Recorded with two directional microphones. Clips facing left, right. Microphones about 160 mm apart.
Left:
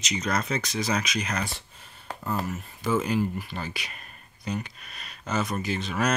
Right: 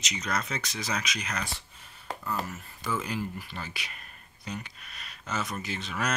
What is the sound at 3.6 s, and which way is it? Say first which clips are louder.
Speech: left 5 dB; 40° left (ahead or behind).